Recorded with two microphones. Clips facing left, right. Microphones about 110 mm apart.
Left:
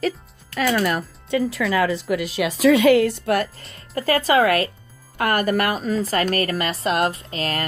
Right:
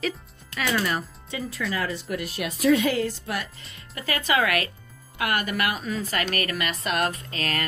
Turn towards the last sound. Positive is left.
turn(degrees=25)  # may be behind; listen again after turning